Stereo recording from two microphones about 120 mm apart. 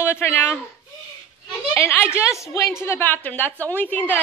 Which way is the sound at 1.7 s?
15° left (ahead or behind).